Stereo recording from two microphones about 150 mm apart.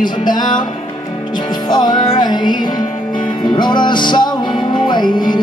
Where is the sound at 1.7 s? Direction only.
30° left (ahead or behind).